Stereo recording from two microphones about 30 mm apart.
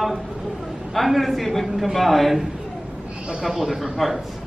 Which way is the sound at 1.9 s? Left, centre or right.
Centre.